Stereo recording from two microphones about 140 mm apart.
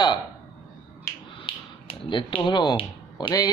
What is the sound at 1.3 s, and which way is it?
Finger snapping, 35° left (ahead or behind).